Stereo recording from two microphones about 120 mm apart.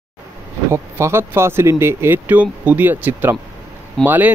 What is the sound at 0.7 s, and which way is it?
Speech, 20° right (ahead or behind).